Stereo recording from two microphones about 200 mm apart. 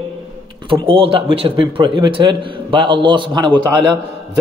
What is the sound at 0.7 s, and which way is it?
Speech, 25° right (ahead or behind).